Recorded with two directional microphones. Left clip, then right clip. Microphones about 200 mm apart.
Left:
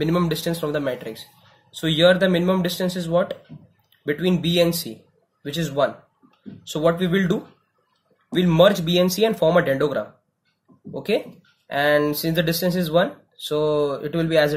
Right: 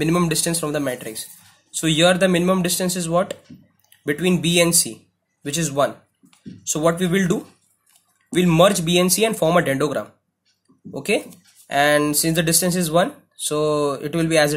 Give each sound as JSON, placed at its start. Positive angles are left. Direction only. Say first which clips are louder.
{"t": 0.0, "sound": "speech", "louder": "right 2 dB", "side_deg": -25}